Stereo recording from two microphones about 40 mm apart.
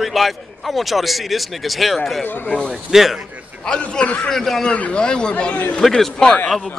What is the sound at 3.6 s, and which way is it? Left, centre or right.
Speech, left.